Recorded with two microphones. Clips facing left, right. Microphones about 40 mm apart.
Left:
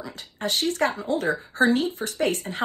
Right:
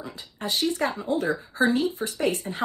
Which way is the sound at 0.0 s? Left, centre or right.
Left.